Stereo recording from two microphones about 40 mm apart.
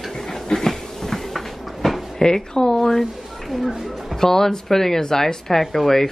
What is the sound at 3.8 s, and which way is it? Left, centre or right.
Music, centre.